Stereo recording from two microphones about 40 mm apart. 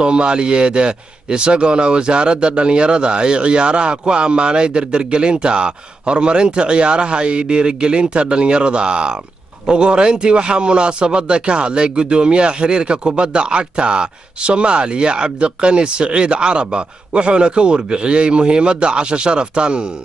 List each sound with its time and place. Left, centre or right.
0.0 s speech: right